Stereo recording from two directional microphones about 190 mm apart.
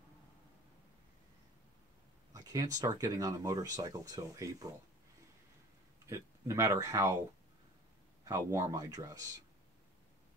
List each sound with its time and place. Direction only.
2.3 s speech: 20° right (ahead or behind)
6.0 s speech: 15° right (ahead or behind)
8.3 s speech: 15° right (ahead or behind)